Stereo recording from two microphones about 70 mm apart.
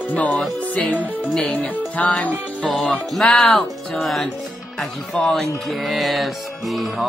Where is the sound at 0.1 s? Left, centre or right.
Left.